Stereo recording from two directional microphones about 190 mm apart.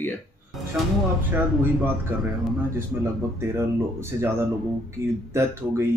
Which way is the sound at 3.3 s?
15° right (ahead or behind).